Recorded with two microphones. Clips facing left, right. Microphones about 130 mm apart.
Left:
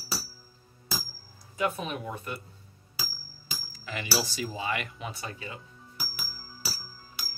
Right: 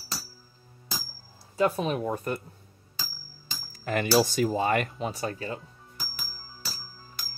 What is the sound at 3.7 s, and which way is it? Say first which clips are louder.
Speech: right 9 dB; 50° right (ahead or behind).